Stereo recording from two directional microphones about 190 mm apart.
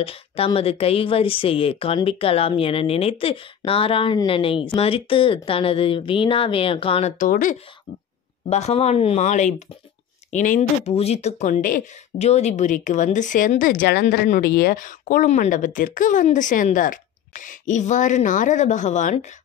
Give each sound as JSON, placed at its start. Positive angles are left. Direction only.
{"t": 0.0, "sound": "speech", "side_deg": 30}
{"t": 8.5, "sound": "speech", "side_deg": 35}